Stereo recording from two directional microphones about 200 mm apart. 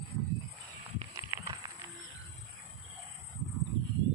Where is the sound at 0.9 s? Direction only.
20° right (ahead or behind).